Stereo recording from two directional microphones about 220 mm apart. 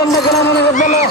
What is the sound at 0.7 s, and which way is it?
Speech, 35° left (ahead or behind).